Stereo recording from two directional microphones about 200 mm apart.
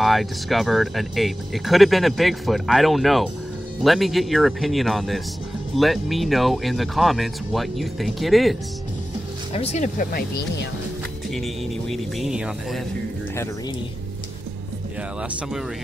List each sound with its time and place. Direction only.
0.0 s speech: centre (ahead or behind)
9.5 s speech: 30° left (ahead or behind)
11.2 s speech: centre (ahead or behind)